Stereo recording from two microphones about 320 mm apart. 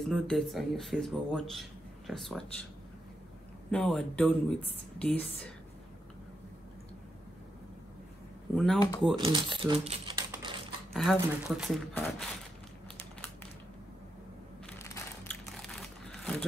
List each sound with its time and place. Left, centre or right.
0.1 s speech: centre
3.7 s speech: centre
8.5 s speech: centre
9.2 s speech: centre
10.9 s speech: centre
14.7 s crumpling: centre